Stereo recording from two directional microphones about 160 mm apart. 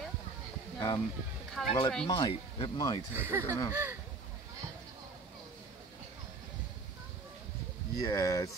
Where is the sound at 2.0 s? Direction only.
30° left (ahead or behind).